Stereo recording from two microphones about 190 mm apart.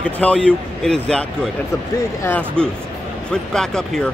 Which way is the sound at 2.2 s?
5° left (ahead or behind).